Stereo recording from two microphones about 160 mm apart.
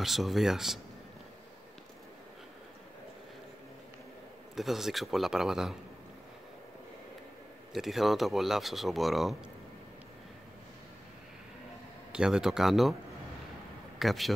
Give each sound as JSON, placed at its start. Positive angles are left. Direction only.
{"t": 0.0, "sound": "speech", "side_deg": 0}
{"t": 4.6, "sound": "speech", "side_deg": 0}
{"t": 7.7, "sound": "speech", "side_deg": 0}
{"t": 12.1, "sound": "speech", "side_deg": -5}
{"t": 13.9, "sound": "speech", "side_deg": 0}